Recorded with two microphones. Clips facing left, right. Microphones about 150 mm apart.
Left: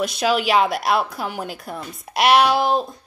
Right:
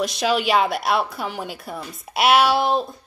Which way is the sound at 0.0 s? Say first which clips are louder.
Left 1 dB; centre (ahead or behind).